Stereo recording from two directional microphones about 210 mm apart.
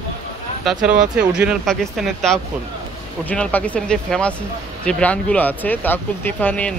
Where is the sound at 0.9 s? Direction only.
5° right (ahead or behind).